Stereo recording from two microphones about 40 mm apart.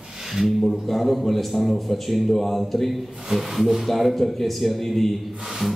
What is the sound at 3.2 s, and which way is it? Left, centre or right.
A man's voice, centre.